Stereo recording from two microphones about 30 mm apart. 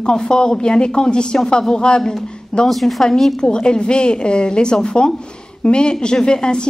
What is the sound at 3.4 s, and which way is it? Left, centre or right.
Speech, left.